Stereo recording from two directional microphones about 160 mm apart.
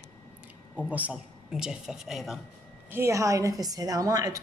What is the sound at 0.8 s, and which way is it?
A man's voice, 10° right (ahead or behind).